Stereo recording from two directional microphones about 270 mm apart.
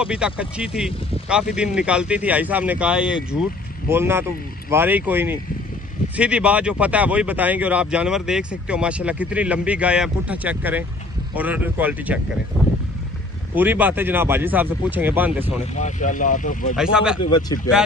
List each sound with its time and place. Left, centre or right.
0.0 s speech: centre
13.6 s speech: centre
15.7 s speech: left
16.7 s speech: centre
17.3 s speech: centre